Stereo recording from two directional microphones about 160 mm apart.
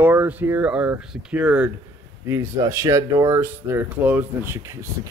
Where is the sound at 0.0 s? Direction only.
15° right (ahead or behind).